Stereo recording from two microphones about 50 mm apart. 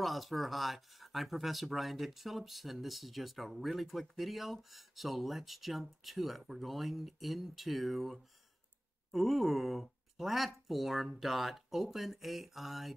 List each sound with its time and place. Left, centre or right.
0.0 s speech: centre